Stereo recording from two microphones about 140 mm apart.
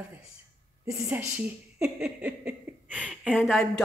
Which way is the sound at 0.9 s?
15° right (ahead or behind).